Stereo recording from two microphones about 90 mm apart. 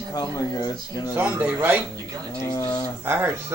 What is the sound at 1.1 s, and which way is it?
Speech, 20° right (ahead or behind).